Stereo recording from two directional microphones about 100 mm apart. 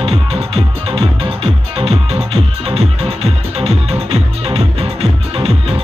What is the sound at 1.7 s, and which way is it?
Music, 90° right.